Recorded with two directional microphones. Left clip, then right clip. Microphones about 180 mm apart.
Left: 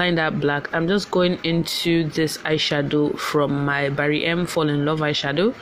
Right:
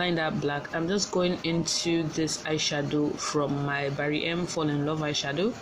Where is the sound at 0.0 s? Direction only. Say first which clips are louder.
Left 7 dB; 45° left (ahead or behind).